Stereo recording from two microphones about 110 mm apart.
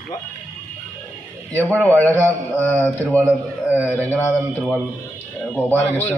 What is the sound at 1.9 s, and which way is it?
Speech, 15° left (ahead or behind).